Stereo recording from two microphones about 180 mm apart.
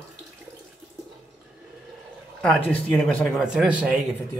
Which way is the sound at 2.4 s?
5° left (ahead or behind).